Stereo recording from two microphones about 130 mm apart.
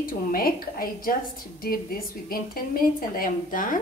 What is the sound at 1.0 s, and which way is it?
A woman's voice, 90° left.